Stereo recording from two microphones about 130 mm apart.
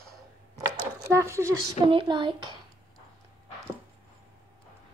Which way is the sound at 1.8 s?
40° right (ahead or behind).